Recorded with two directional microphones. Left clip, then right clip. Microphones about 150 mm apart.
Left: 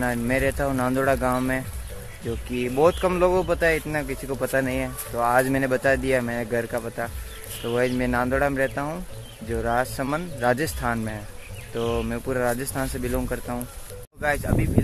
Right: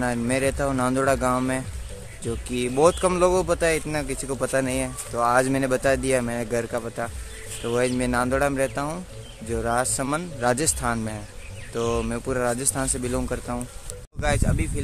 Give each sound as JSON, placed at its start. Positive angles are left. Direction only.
{"t": 0.0, "sound": "speech", "side_deg": -20}